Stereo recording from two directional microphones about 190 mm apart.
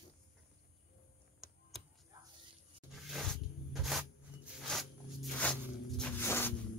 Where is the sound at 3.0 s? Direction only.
Centre (ahead or behind).